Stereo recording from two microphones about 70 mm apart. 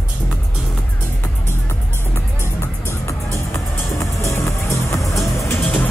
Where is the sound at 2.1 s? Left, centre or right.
Left.